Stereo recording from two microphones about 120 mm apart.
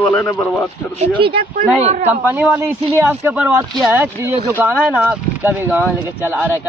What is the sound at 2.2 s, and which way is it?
A man's voice, 15° right (ahead or behind).